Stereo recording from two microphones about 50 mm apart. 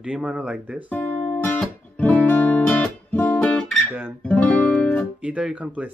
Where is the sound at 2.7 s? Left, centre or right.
Left.